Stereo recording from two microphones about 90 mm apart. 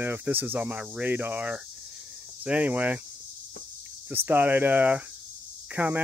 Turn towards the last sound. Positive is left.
turn(degrees=-15)  # may be behind; listen again after turning